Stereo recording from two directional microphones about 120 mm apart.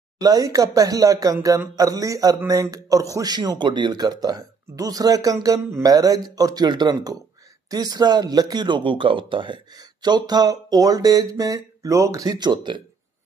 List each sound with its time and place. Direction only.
0.2 s a man's voice: 30° right (ahead or behind)